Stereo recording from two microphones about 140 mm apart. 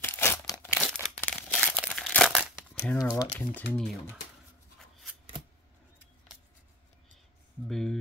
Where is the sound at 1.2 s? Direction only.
10° left (ahead or behind).